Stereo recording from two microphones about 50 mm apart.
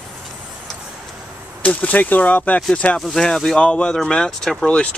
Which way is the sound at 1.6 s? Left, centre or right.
Left.